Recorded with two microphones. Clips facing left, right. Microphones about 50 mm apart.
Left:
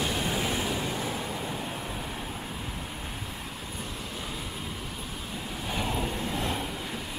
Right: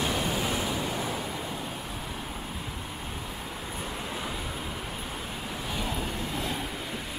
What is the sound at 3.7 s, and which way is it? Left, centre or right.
Vehicle, right.